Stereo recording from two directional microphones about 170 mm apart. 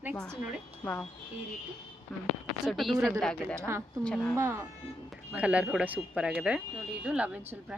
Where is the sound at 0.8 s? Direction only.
10° left (ahead or behind).